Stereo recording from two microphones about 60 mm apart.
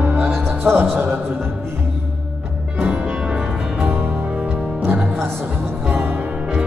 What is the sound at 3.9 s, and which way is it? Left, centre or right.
Music, right.